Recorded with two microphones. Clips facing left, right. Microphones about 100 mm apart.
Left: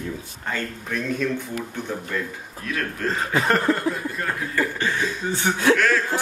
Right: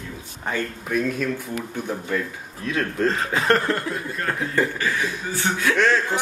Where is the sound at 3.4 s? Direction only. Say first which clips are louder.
Left 1 dB; centre (ahead or behind).